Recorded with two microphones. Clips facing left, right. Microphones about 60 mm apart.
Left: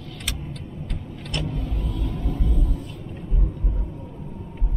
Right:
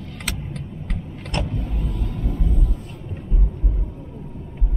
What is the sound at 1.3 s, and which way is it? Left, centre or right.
Vehicle, right.